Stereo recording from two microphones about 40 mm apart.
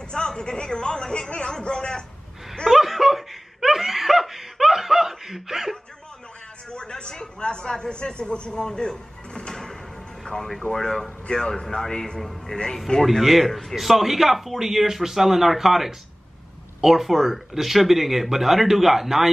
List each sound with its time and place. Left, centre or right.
0.1 s a sound: centre
2.7 s laughter: centre
6.7 s a sound: left
10.2 s speech: centre
13.2 s speech: centre
13.5 s speech: centre
13.7 s speech: centre